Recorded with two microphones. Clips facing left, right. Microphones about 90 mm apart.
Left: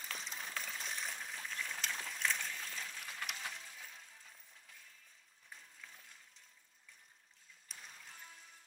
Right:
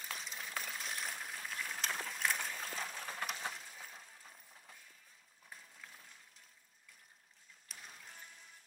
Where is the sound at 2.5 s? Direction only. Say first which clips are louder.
Right 3 dB; 45° right (ahead or behind).